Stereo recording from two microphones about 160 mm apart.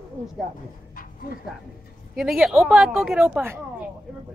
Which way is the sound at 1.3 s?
60° left (ahead or behind).